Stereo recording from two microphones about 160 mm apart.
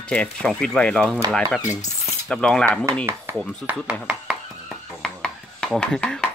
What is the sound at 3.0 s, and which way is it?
Speech, 15° right (ahead or behind).